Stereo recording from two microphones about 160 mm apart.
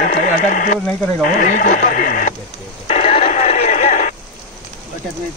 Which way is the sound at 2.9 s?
40° left (ahead or behind).